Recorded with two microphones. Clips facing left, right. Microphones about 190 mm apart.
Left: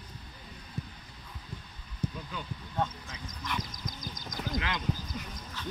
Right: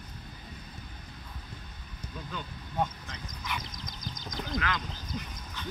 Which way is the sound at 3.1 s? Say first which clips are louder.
Even; centre (ahead or behind).